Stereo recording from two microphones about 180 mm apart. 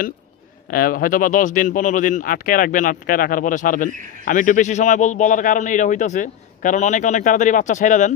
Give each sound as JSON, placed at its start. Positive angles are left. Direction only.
{"t": 0.7, "sound": "speech", "side_deg": 55}